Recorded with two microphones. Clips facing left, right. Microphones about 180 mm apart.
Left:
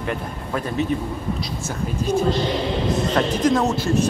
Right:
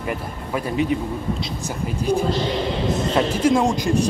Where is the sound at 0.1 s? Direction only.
10° right (ahead or behind).